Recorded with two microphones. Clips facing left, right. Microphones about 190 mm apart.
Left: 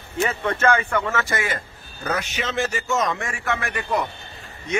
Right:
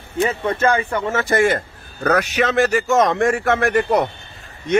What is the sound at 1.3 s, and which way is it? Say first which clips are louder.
Speech: right 10 dB; 45° right (ahead or behind).